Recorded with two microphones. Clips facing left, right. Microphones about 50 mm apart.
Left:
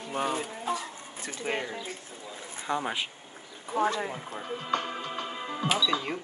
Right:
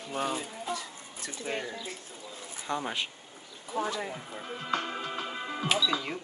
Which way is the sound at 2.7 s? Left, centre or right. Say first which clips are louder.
Left 2 dB; centre.